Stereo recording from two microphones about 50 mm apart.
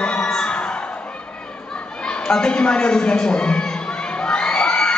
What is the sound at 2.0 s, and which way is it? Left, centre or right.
A man's voice, centre.